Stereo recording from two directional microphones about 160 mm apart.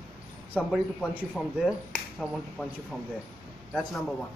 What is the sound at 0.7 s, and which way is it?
Speech, 5° left (ahead or behind).